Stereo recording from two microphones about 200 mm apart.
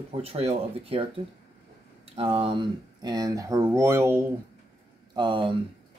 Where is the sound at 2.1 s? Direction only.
30° right (ahead or behind).